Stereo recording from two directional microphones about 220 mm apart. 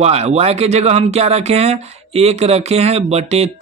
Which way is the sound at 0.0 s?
30° right (ahead or behind).